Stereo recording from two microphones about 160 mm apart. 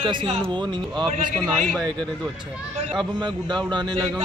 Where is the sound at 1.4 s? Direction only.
5° left (ahead or behind).